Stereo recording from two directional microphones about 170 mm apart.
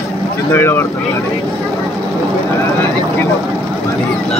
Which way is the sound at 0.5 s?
10° left (ahead or behind).